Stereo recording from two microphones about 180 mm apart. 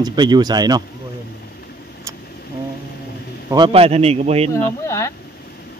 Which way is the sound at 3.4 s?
25° right (ahead or behind).